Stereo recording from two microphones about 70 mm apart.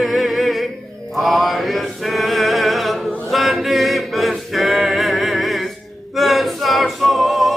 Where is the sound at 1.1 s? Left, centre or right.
Centre.